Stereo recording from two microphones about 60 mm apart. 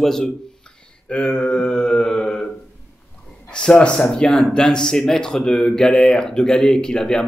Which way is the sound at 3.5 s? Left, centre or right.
Centre.